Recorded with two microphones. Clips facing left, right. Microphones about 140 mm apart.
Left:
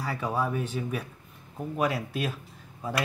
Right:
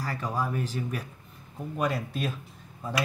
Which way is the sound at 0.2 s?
5° left (ahead or behind).